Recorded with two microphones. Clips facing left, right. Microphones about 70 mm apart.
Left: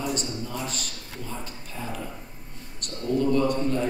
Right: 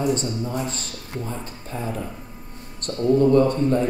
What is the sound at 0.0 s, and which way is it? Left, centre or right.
A man's voice, right.